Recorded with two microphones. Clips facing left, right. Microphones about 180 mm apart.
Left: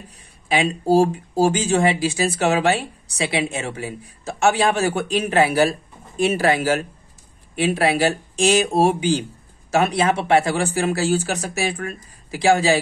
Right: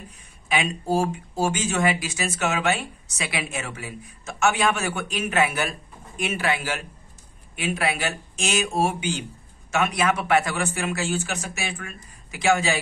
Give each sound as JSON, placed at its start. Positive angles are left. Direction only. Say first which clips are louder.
{"t": 0.5, "sound": "speech", "louder": "left 6 dB", "side_deg": 35}